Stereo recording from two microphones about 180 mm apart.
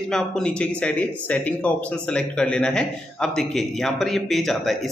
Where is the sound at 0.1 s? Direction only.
5° left (ahead or behind).